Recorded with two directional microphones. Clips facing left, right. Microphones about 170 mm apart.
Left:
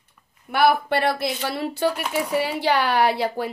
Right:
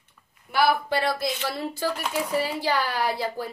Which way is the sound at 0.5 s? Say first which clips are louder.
Left 3 dB; 60° left (ahead or behind).